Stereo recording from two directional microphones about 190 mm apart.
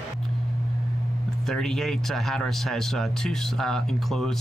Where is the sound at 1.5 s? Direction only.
Centre (ahead or behind).